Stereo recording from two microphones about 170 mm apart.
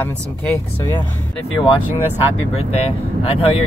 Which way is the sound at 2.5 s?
35° left (ahead or behind).